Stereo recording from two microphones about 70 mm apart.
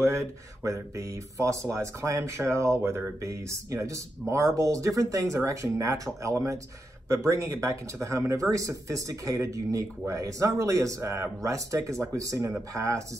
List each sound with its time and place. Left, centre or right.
0.0 s speech: right